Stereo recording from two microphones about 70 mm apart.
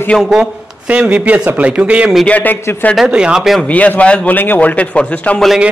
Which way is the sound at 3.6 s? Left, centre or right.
Left.